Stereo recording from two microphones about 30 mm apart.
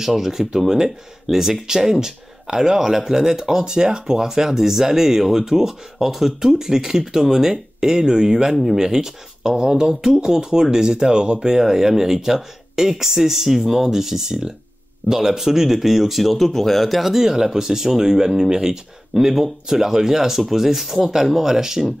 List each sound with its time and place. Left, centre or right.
0.0 s speech: centre
16.4 s speech: centre
17.1 s speech: centre